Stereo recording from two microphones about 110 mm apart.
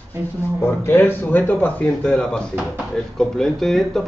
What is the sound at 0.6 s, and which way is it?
Speech, 20° left (ahead or behind).